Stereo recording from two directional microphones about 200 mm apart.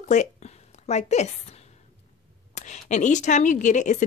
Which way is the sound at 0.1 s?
35° left (ahead or behind).